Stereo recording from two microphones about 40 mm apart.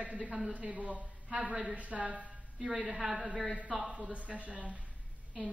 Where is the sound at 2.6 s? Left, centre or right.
Centre.